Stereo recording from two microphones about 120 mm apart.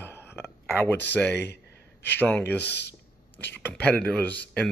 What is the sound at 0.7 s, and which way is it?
Speech, 15° left (ahead or behind).